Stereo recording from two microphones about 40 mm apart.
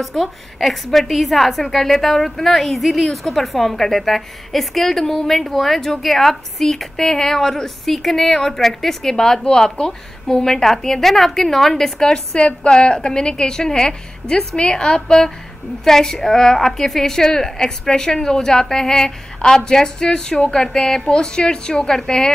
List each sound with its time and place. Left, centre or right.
0.0 s a woman's voice: centre
10.4 s a woman's voice: centre
12.0 s a woman's voice: centre
15.0 s a woman's voice: centre
20.6 s a woman's voice: centre
21.1 s a woman's voice: centre